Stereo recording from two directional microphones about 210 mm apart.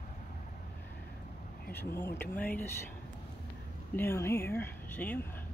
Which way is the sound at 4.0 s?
10° left (ahead or behind).